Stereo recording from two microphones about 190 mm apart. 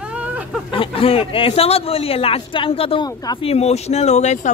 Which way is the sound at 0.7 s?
30° left (ahead or behind).